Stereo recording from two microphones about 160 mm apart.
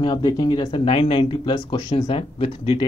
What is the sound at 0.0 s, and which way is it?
Speech, 25° left (ahead or behind).